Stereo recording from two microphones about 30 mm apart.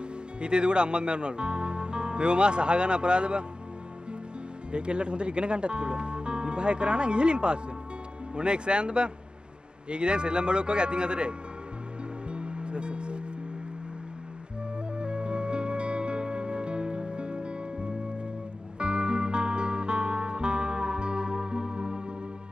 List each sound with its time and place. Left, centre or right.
0.4 s speech: right
4.7 s speech: right
12.3 s music: right
15.0 s music: right
18.8 s music: right